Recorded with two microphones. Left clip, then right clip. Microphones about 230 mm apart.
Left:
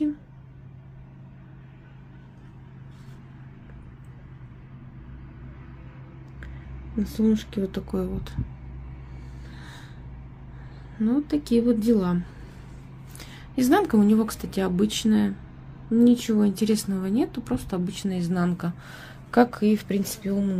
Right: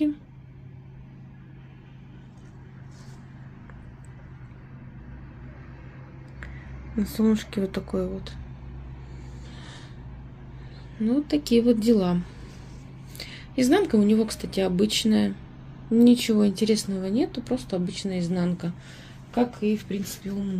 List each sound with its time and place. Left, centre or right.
7.0 s a woman's voice: centre
7.8 s speech: left
11.1 s a woman's voice: centre
13.2 s speech: left
19.6 s speech: left